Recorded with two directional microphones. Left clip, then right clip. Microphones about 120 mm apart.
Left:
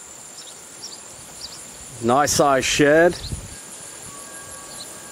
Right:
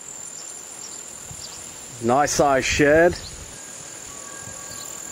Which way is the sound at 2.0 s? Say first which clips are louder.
Left 1 dB; 20° left (ahead or behind).